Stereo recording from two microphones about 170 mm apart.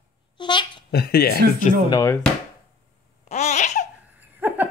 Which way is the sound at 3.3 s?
40° left (ahead or behind).